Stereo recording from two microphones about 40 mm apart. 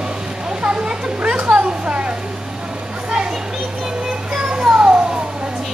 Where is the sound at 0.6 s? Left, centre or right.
Right.